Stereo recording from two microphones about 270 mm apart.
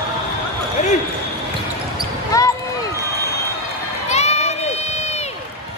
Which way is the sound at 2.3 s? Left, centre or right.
Centre.